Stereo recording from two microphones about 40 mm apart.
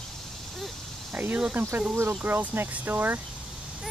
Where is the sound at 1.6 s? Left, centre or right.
Right.